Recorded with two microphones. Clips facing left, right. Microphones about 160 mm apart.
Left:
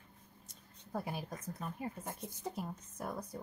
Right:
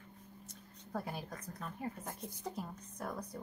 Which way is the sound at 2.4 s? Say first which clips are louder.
Left 2 dB; 5° left (ahead or behind).